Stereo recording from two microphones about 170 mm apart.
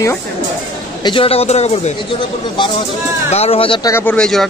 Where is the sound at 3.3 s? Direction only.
35° left (ahead or behind).